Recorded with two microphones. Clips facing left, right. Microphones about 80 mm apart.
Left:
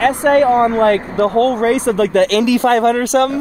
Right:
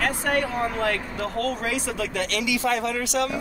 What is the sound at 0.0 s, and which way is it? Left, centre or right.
Speech, left.